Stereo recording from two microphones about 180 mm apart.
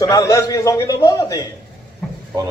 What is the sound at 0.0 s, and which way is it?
A man's voice, 20° left (ahead or behind).